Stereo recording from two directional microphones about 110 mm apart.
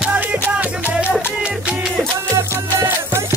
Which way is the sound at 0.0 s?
15° right (ahead or behind).